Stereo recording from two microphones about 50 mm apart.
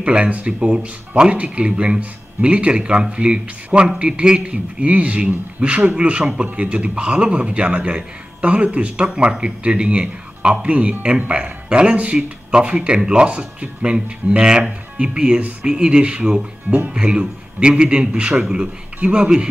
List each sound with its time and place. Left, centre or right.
0.0 s a man's voice: right